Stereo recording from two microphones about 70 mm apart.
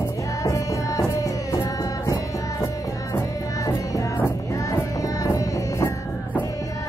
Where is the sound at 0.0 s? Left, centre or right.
Left.